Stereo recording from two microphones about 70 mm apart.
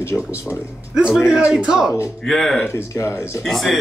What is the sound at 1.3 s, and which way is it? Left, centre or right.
Speech, centre.